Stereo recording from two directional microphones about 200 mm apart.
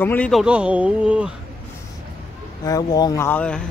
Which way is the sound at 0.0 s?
10° left (ahead or behind).